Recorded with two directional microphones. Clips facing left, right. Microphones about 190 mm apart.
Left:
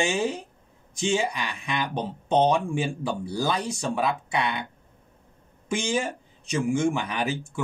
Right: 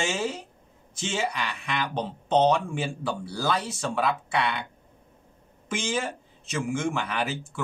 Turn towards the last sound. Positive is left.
turn(degrees=15)  # may be behind; listen again after turning